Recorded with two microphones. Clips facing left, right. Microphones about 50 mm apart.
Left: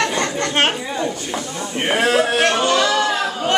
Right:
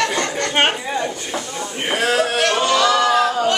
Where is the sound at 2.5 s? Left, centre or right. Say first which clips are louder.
Even; centre.